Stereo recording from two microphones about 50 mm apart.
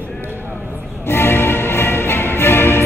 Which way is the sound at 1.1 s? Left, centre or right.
Left.